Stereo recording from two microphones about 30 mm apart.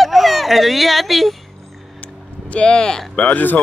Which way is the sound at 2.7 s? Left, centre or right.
Left.